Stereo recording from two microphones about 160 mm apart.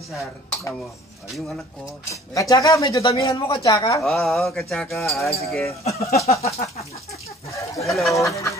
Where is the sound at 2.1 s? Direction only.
20° left (ahead or behind).